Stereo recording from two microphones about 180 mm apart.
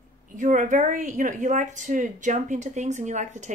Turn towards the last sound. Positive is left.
turn(degrees=-40)  # may be behind; listen again after turning